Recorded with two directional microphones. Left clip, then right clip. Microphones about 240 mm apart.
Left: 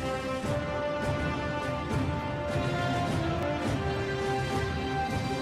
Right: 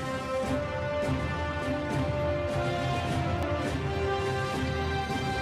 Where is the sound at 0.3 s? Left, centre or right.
Centre.